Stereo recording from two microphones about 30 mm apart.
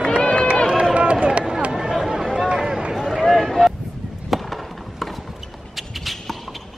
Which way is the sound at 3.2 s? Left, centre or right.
Centre.